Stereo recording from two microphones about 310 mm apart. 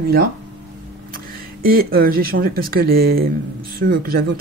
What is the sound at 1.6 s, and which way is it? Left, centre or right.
A woman's voice, right.